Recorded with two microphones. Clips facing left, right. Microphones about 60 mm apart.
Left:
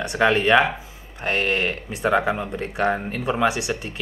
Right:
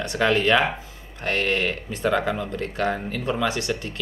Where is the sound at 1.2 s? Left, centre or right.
Centre.